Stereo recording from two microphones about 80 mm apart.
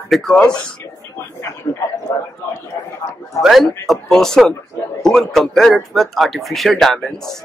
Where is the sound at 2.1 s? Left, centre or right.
Left.